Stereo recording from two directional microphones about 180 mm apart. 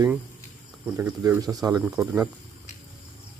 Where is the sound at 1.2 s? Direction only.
15° right (ahead or behind).